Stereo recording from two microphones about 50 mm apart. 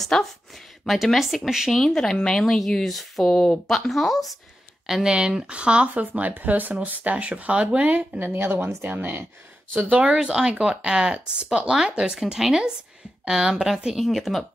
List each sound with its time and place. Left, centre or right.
0.0 s speech: centre
1.2 s speech: centre
1.8 s speech: centre
2.9 s speech: centre
4.8 s speech: centre
8.2 s speech: right
9.8 s speech: right
10.0 s speech: centre